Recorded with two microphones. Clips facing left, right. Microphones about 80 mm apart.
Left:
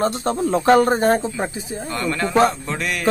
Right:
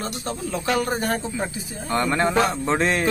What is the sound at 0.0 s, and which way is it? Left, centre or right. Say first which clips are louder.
Speech: left 9 dB; left.